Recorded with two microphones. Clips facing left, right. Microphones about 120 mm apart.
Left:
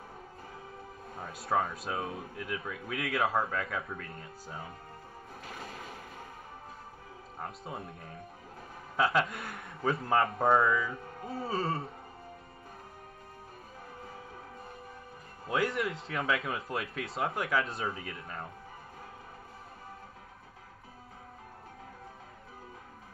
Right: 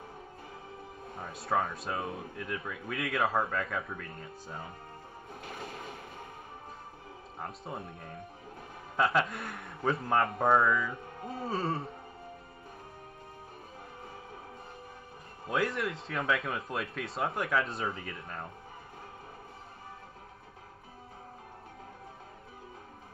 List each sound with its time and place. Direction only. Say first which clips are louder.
1.2 s speech: even; centre (ahead or behind)
5.5 s music: right 2 dB; 30° right (ahead or behind)
7.4 s speech: even; centre (ahead or behind)
8.9 s speech: even; centre (ahead or behind)
15.4 s speech: even; centre (ahead or behind)